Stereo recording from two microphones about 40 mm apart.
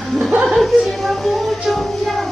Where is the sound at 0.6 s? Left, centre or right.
Centre.